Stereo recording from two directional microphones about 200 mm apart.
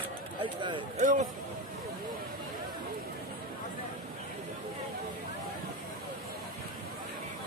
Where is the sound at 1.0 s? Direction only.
40° right (ahead or behind).